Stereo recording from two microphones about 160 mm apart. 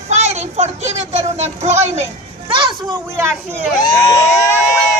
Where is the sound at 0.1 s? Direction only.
45° right (ahead or behind).